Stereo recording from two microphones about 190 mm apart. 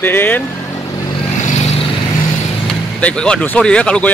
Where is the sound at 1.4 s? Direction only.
35° left (ahead or behind).